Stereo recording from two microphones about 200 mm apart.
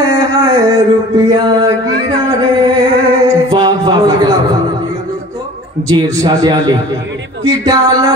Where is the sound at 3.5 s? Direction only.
20° right (ahead or behind).